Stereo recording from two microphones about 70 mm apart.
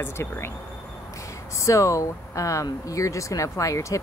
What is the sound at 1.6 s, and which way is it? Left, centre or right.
Speech, left.